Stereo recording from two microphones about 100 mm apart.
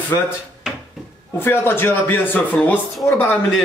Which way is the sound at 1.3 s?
25° left (ahead or behind).